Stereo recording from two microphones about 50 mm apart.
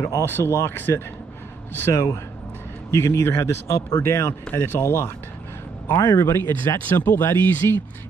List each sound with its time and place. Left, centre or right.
0.2 s speech: left
0.7 s speech: left
2.9 s speech: left
4.5 s speech: left